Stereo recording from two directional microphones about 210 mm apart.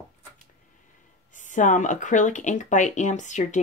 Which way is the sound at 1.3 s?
35° left (ahead or behind).